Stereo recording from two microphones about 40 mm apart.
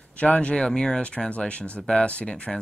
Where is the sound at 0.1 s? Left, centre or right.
Left.